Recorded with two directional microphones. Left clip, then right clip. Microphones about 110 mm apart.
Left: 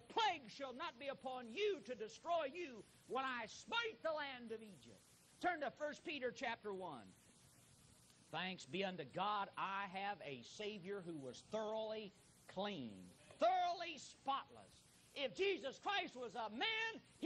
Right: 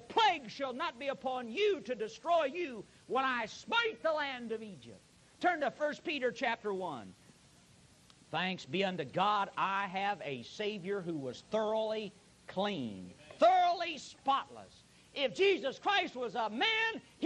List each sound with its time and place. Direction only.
0.1 s a man's voice: 25° left (ahead or behind)
8.3 s a man's voice: 30° left (ahead or behind)